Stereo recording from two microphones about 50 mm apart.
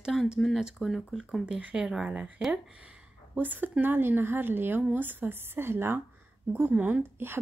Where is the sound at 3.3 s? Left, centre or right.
Right.